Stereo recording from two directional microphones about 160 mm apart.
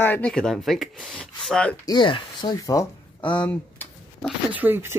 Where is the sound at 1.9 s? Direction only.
30° left (ahead or behind).